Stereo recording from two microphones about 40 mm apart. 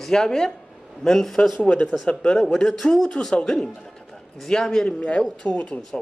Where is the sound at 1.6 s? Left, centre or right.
Left.